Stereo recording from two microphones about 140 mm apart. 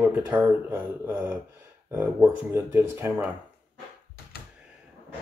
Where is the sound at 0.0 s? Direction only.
15° right (ahead or behind).